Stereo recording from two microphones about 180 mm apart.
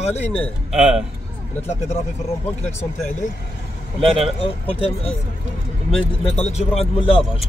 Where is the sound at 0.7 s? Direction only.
5° right (ahead or behind).